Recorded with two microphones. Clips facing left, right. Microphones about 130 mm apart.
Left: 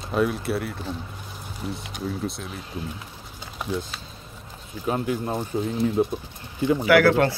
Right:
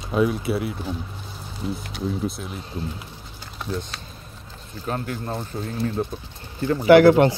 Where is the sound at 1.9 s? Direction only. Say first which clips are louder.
Right 2 dB; centre (ahead or behind); by 6.9 s 15° left (ahead or behind).